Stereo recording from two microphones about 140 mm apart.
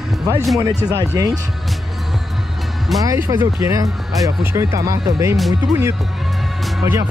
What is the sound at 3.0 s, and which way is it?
Speech, 25° right (ahead or behind).